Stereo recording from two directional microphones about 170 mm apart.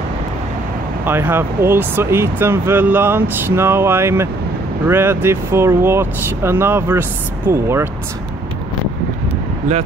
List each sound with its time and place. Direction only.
1.0 s speech: 10° right (ahead or behind)